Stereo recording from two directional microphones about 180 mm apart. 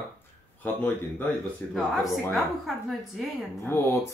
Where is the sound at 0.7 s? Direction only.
10° left (ahead or behind).